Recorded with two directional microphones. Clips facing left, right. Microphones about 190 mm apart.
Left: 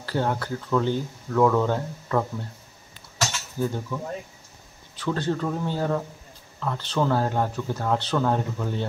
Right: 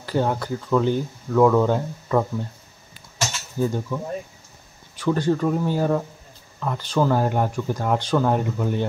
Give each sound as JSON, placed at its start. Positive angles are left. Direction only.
{"t": 0.0, "sound": "speech", "side_deg": -15}
{"t": 3.2, "sound": "a sound", "side_deg": -15}
{"t": 4.9, "sound": "speech", "side_deg": -10}